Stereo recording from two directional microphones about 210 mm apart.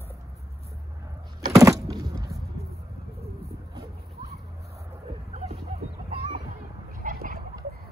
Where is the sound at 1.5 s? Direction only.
15° right (ahead or behind).